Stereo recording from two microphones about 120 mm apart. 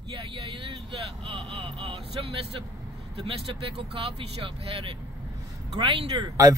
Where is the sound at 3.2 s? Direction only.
50° right (ahead or behind).